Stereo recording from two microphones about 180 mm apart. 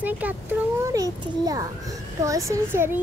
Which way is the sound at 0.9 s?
20° right (ahead or behind).